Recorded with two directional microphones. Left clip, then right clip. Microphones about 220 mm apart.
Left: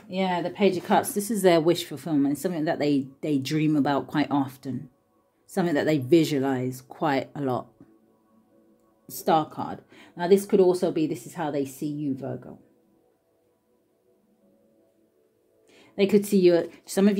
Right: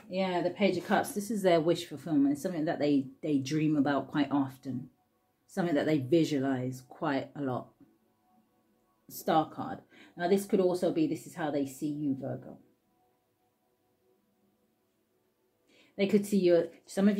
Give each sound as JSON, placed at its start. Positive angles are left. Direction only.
{"t": 0.1, "sound": "speech", "side_deg": 40}
{"t": 9.0, "sound": "speech", "side_deg": 40}
{"t": 15.6, "sound": "a woman's voice", "side_deg": 40}